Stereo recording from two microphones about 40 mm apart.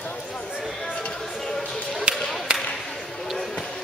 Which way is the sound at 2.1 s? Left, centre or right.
Right.